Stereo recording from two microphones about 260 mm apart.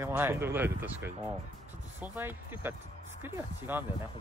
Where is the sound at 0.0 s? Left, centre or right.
Centre.